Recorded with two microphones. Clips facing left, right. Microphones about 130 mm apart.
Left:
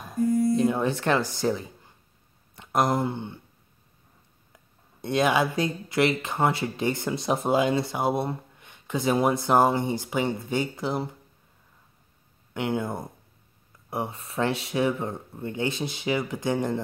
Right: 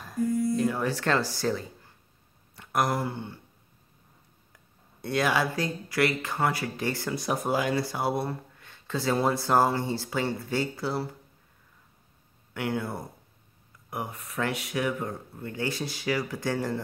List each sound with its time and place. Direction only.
0.6 s speech: 20° left (ahead or behind)
2.5 s a sound: 20° left (ahead or behind)
5.0 s speech: 20° left (ahead or behind)
12.5 s speech: 20° left (ahead or behind)